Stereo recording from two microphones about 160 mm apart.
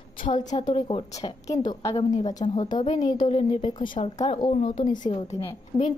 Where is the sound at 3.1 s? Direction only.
30° left (ahead or behind).